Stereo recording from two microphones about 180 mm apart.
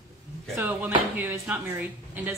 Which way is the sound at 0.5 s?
10° right (ahead or behind).